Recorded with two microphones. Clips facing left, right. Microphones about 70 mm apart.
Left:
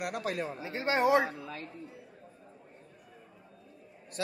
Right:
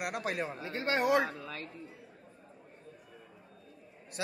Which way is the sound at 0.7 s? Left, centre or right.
Left.